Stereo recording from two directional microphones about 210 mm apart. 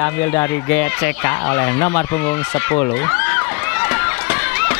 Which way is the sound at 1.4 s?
10° left (ahead or behind).